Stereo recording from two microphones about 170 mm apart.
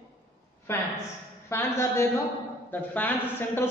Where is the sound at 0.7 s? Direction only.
15° left (ahead or behind).